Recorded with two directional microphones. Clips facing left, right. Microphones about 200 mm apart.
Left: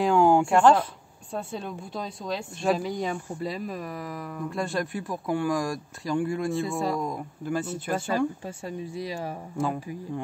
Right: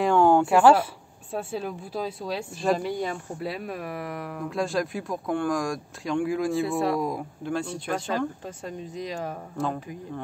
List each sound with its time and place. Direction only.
0.0 s speech: 5° left (ahead or behind)
0.5 s speech: 5° right (ahead or behind)